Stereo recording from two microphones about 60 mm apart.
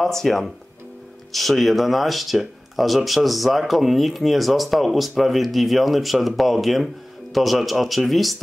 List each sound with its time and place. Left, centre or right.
0.0 s speech: centre